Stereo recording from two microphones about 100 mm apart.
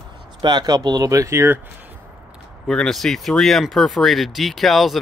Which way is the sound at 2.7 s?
5° left (ahead or behind).